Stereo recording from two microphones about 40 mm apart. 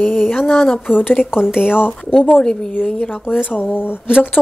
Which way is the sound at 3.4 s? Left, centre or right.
Left.